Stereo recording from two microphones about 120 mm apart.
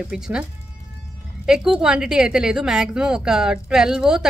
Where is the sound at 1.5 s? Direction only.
5° right (ahead or behind).